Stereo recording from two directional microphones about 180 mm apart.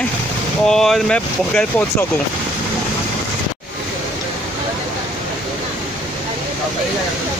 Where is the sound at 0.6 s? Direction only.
Centre (ahead or behind).